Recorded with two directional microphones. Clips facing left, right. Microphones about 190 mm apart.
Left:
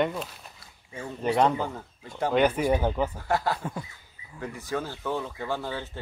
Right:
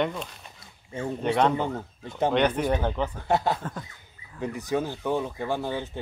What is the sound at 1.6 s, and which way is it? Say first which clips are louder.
Speech: right 3 dB; 20° right (ahead or behind).